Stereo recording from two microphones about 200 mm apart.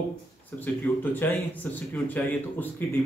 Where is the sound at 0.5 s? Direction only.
10° left (ahead or behind).